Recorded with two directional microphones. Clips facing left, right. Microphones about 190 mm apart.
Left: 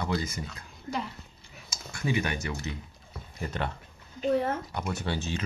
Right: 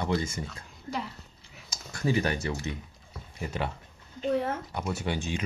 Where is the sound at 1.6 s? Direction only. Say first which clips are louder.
Right 2 dB; 40° right (ahead or behind).